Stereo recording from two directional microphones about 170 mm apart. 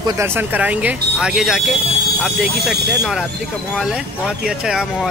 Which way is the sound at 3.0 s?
Centre (ahead or behind).